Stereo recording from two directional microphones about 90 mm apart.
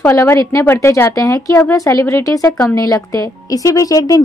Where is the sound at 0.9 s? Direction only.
35° left (ahead or behind).